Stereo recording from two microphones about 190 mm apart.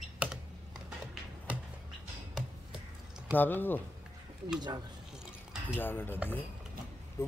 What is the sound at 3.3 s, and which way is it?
Speech, 10° left (ahead or behind).